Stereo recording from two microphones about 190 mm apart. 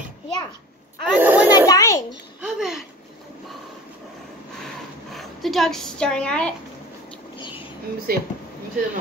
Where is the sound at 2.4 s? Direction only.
5° right (ahead or behind).